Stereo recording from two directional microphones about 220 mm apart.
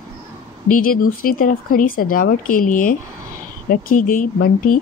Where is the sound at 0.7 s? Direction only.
40° left (ahead or behind).